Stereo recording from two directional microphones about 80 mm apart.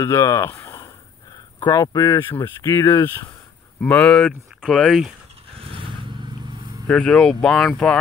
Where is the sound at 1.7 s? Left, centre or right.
Left.